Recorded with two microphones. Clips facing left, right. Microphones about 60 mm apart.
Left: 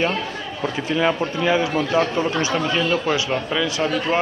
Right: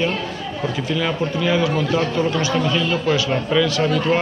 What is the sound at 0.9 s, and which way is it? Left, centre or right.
Speech, left.